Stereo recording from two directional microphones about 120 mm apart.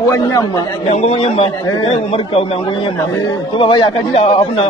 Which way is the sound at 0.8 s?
60° left (ahead or behind).